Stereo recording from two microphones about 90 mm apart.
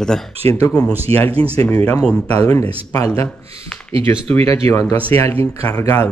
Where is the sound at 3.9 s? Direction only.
90° right.